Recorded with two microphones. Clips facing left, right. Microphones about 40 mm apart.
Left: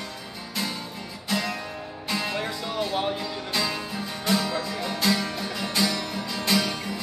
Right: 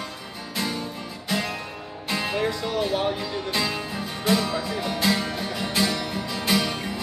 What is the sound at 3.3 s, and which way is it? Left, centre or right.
Music, centre.